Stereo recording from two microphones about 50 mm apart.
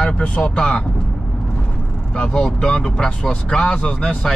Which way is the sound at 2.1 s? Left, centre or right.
Left.